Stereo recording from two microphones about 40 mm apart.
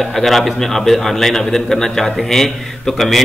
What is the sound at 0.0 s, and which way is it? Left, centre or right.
A man's voice, centre.